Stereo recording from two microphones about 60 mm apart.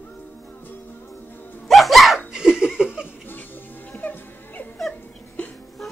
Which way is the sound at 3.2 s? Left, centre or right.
Left.